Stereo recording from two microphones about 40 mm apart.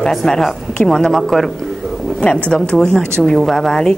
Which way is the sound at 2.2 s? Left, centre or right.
Left.